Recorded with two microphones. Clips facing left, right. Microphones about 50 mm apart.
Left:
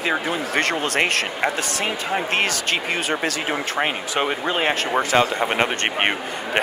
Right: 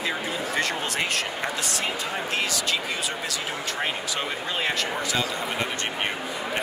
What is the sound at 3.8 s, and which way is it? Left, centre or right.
Speech, left.